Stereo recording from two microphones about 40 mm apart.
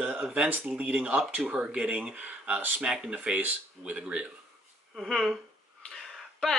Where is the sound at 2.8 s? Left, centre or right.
Centre.